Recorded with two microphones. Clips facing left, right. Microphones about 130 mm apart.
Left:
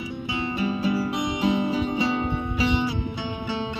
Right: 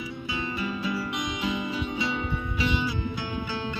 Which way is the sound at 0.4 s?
30° left (ahead or behind).